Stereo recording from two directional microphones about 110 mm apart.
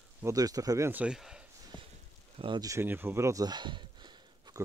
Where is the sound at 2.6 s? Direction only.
30° right (ahead or behind).